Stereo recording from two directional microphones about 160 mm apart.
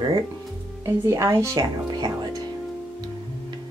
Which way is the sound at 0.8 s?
15° right (ahead or behind).